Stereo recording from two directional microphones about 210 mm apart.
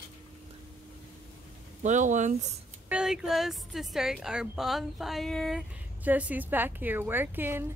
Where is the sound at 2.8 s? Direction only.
5° right (ahead or behind).